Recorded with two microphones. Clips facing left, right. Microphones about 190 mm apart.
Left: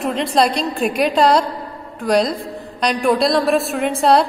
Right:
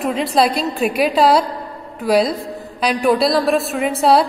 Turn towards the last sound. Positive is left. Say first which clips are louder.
# even
turn(degrees=0)  # may be behind; listen again after turning